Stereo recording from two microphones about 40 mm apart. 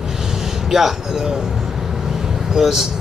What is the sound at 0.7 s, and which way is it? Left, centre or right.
Speech, centre.